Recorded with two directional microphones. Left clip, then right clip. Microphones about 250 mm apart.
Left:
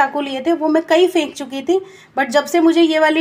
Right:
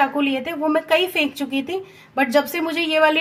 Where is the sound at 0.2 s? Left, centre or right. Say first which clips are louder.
Left 4 dB; centre.